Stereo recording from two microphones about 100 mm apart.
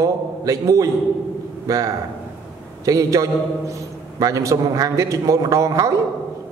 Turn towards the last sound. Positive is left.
turn(degrees=-35)  # may be behind; listen again after turning